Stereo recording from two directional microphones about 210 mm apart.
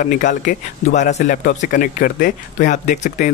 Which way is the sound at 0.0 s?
40° left (ahead or behind).